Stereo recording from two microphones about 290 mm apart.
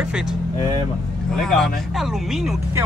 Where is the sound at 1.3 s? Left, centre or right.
Centre.